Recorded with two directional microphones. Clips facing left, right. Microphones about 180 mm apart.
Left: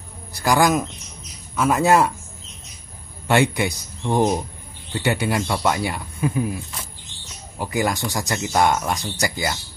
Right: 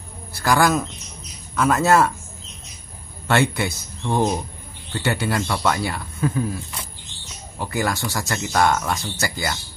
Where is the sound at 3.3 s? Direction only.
15° left (ahead or behind).